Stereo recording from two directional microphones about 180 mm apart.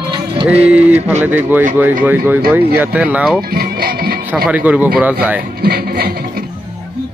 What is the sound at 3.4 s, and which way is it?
Music, 55° right (ahead or behind).